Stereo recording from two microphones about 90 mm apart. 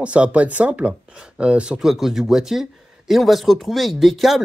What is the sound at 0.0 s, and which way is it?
Speech, 15° right (ahead or behind).